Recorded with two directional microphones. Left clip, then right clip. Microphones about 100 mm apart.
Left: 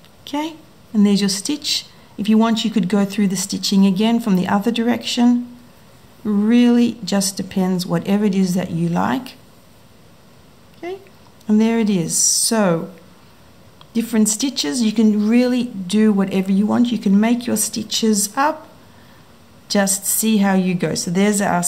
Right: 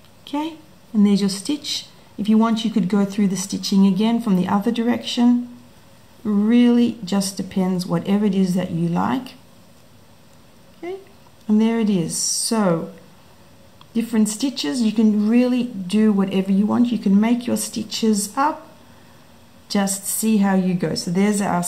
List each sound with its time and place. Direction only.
0.9 s a woman's voice: 35° left (ahead or behind)
10.8 s a woman's voice: 35° left (ahead or behind)
13.9 s a woman's voice: 35° left (ahead or behind)
19.7 s a woman's voice: 35° left (ahead or behind)